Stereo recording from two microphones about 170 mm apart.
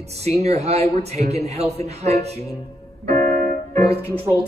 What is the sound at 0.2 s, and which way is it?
Speech, 40° right (ahead or behind).